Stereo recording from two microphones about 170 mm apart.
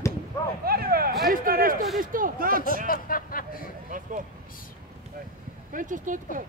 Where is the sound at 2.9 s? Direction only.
55° left (ahead or behind).